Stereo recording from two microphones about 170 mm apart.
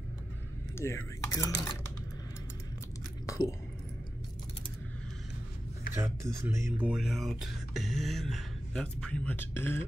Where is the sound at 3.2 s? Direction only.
20° left (ahead or behind).